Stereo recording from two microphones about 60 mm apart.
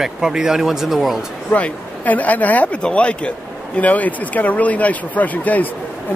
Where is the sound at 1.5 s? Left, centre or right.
Left.